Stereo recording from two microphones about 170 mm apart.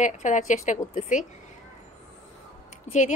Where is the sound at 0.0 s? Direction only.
45° left (ahead or behind).